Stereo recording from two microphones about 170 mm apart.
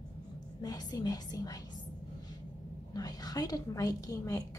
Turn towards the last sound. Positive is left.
turn(degrees=20)  # may be behind; listen again after turning